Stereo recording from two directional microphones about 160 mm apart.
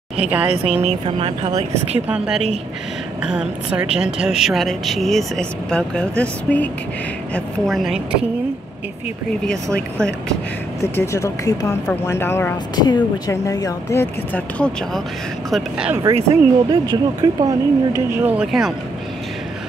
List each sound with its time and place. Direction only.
0.3 s speech: 10° right (ahead or behind)
1.0 s speech: 40° right (ahead or behind)
2.0 s a woman's voice: 5° right (ahead or behind)
10.8 s speech: 15° left (ahead or behind)
12.7 s speech: 25° left (ahead or behind)
15.5 s a woman's voice: 5° right (ahead or behind)
16.3 s speech: 25° right (ahead or behind); by 18.7 s 5° right (ahead or behind)